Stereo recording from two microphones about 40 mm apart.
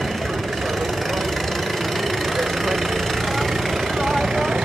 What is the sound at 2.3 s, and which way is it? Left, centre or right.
Vehicle, centre.